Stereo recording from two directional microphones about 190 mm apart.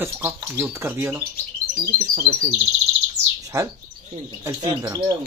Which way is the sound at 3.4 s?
20° right (ahead or behind).